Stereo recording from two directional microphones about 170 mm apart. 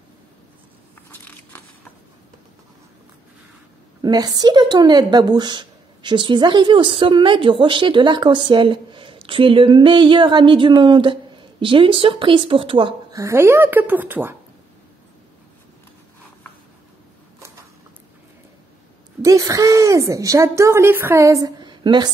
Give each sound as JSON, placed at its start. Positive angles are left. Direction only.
{"t": 1.1, "sound": "crackle", "side_deg": 10}
{"t": 4.0, "sound": "a woman's voice", "side_deg": -25}
{"t": 13.2, "sound": "speech", "side_deg": -15}
{"t": 19.2, "sound": "a woman's voice", "side_deg": -20}